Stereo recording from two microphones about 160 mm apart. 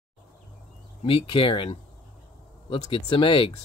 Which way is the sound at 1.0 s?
35° left (ahead or behind).